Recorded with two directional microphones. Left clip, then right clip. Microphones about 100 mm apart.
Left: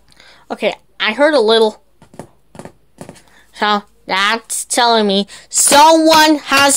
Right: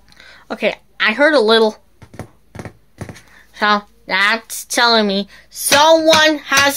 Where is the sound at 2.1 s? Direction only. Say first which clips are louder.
Even; 30° right (ahead or behind).